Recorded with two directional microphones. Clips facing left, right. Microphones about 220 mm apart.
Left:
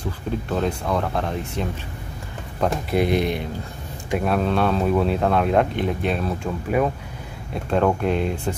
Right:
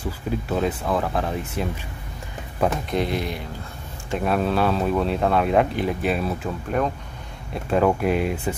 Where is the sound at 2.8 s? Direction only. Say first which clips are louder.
Left 4 dB; 10° left (ahead or behind).